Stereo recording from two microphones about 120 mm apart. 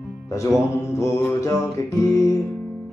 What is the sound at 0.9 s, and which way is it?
Music, 25° left (ahead or behind).